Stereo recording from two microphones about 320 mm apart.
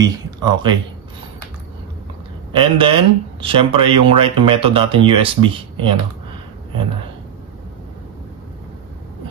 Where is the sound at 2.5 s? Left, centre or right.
Centre.